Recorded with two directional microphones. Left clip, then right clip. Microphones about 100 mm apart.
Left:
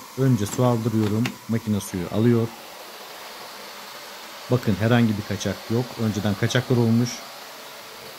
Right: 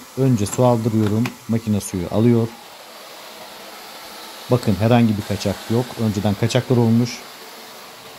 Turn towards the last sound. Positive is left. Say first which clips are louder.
# right 4 dB
turn(degrees=-20)  # may be behind; listen again after turning